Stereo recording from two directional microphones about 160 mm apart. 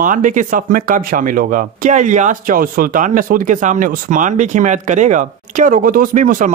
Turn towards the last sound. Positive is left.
turn(degrees=-55)  # may be behind; listen again after turning